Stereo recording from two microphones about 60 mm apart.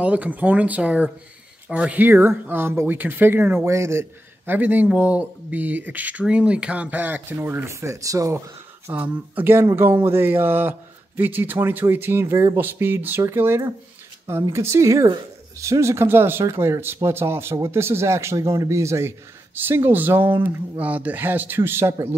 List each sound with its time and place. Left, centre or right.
0.0 s speech: right
2.0 s speech: right
3.6 s speech: right
4.5 s speech: right
7.3 s speech: right
8.9 s speech: right
14.2 s speech: right
19.5 s speech: right